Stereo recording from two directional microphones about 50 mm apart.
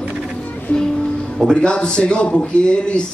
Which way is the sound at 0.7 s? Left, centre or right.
Left.